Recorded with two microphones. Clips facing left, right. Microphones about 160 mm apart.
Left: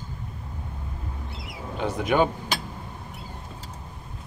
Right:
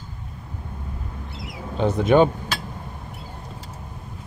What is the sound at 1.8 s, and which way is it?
Speech, 25° right (ahead or behind).